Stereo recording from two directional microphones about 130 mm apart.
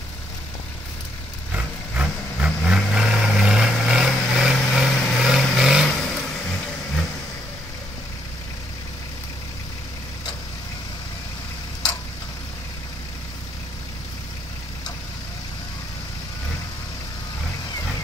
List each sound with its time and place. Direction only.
1.5 s vehicle: 10° right (ahead or behind)